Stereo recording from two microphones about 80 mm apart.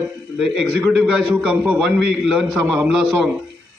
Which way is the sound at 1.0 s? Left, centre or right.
Centre.